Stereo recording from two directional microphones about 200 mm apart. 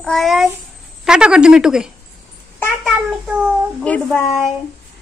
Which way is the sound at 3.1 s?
5° right (ahead or behind).